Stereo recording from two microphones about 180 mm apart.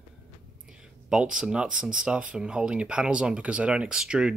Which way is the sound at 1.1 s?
5° right (ahead or behind).